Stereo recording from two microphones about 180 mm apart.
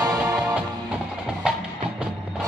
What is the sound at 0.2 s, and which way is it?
Music, 10° right (ahead or behind).